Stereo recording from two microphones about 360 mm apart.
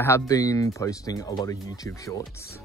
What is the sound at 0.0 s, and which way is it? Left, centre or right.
Speech, centre.